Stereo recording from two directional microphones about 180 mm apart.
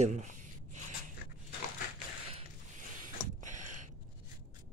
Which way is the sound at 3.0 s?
45° right (ahead or behind).